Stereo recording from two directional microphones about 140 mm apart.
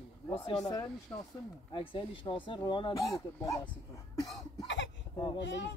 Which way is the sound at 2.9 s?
25° left (ahead or behind).